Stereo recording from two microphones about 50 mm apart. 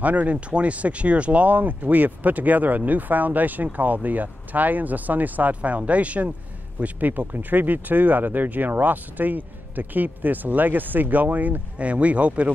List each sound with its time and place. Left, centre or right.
0.0 s speech: right